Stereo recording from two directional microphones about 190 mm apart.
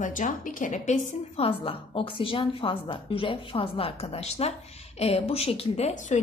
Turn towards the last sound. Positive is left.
turn(degrees=40)  # may be behind; listen again after turning